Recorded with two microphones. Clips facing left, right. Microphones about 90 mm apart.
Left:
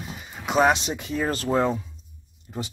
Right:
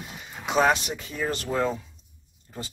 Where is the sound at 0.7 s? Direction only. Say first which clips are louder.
Left 2 dB; 20° left (ahead or behind).